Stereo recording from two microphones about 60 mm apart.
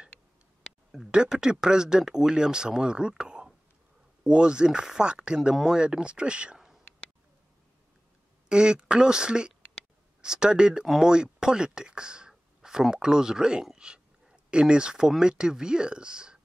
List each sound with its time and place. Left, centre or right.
0.9 s speech: centre
8.5 s speech: centre